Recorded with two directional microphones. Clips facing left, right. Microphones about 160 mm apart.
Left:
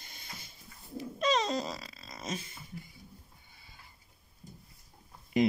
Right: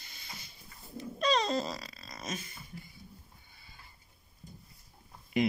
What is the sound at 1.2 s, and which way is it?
Grunt, 20° left (ahead or behind).